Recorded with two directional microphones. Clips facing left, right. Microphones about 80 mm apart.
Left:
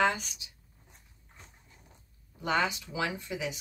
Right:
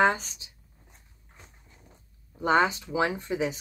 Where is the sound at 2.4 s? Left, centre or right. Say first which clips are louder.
Right 6 dB; right.